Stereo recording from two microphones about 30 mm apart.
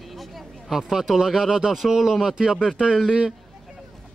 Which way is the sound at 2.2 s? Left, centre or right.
Right.